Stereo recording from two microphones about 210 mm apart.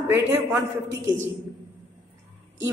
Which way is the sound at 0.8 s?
60° right (ahead or behind).